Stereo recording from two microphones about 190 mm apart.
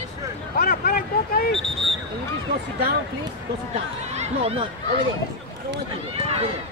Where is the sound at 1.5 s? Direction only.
Centre (ahead or behind).